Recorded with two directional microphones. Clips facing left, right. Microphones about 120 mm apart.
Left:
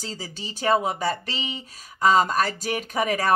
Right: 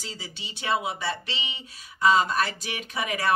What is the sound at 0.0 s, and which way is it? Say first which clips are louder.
A woman's voice: left 5 dB; 40° left (ahead or behind).